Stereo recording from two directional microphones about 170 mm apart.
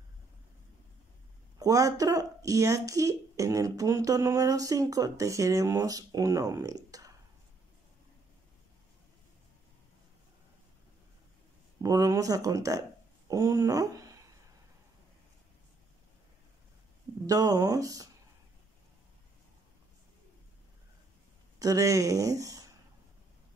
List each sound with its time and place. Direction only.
1.6 s speech: 20° right (ahead or behind)
11.8 s speech: 20° right (ahead or behind)
13.3 s a sound: 20° right (ahead or behind)
17.3 s speech: 20° right (ahead or behind)
21.5 s speech: 20° right (ahead or behind)